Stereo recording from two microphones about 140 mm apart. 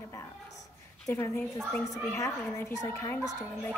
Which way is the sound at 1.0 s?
15° left (ahead or behind).